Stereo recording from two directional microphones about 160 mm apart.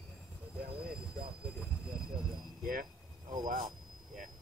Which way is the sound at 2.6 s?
60° right (ahead or behind).